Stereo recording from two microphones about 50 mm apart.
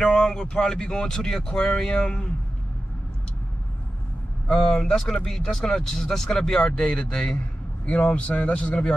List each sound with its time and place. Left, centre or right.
0.0 s speech: centre
4.5 s a man's voice: centre